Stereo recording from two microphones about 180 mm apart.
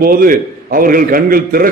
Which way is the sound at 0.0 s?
50° right (ahead or behind).